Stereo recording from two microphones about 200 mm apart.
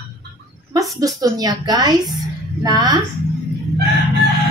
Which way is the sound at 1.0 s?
20° right (ahead or behind).